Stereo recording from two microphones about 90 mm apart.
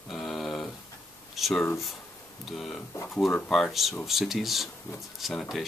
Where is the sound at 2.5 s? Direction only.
5° left (ahead or behind).